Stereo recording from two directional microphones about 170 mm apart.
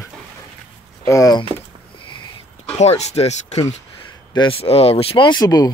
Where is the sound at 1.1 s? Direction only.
20° left (ahead or behind).